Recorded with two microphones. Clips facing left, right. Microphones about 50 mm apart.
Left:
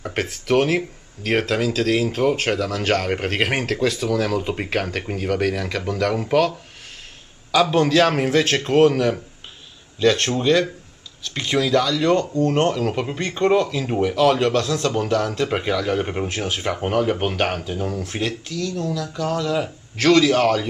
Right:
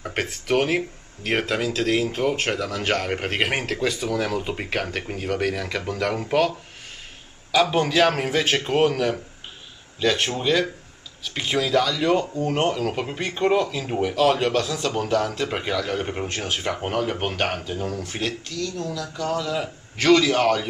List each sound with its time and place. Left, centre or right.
0.0 s speech: centre
7.7 s speech: centre